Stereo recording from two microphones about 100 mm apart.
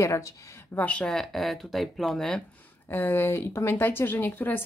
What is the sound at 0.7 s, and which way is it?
Speech, 15° left (ahead or behind).